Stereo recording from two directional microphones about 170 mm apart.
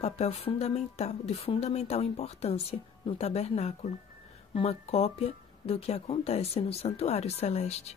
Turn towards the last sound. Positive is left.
turn(degrees=40)  # may be behind; listen again after turning